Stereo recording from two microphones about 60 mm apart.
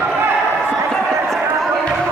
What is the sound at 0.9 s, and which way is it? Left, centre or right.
Run, centre.